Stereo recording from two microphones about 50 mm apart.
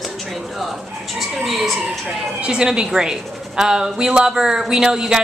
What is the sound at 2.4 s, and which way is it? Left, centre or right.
A woman's voice, centre.